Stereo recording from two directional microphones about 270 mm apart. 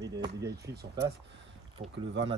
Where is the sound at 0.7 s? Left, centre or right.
Right.